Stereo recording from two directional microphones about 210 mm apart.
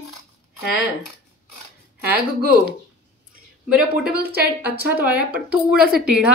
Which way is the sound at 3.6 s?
5° right (ahead or behind).